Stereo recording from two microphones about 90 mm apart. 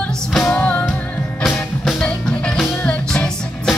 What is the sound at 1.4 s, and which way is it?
Music, centre (ahead or behind).